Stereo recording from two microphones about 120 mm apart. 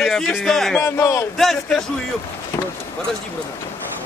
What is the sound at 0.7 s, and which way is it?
Speech, 20° left (ahead or behind).